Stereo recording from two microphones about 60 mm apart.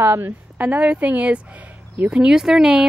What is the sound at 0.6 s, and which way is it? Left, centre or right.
Speech, right.